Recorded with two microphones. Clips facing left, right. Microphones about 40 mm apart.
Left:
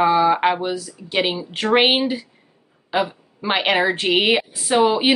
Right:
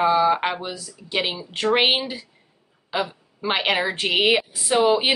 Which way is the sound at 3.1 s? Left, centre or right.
Centre.